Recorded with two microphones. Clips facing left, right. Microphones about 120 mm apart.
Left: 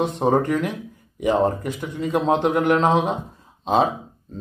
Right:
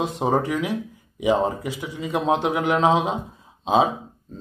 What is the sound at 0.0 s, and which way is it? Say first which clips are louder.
Speech: left 3 dB; 5° right (ahead or behind).